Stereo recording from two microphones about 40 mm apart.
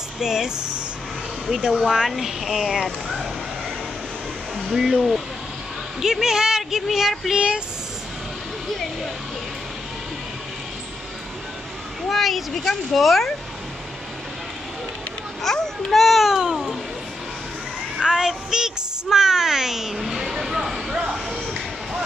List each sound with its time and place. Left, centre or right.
0.2 s speech: centre
1.6 s speech: centre
4.6 s speech: centre
7.3 s speech: right
12.1 s speech: centre
15.4 s a child's voice: centre
15.9 s speech: centre
18.0 s speech: centre
20.1 s music: centre